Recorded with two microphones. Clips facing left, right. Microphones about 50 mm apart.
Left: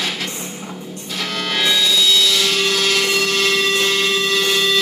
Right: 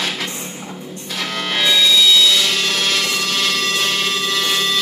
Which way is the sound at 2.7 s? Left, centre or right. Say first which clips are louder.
Left 2 dB; right.